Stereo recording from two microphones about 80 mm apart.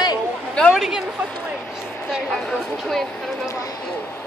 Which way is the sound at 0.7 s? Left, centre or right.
Centre.